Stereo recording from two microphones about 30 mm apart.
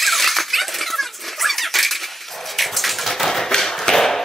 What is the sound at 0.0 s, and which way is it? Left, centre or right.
Squeak, centre.